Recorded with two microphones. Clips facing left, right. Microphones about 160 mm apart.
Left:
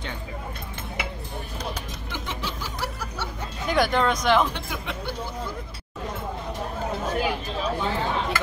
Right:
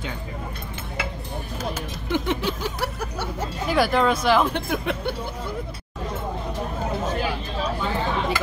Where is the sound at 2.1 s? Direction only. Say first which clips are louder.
Right 9 dB; 60° right (ahead or behind).